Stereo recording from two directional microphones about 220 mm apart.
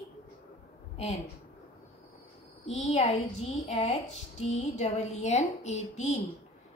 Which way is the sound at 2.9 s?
30° left (ahead or behind).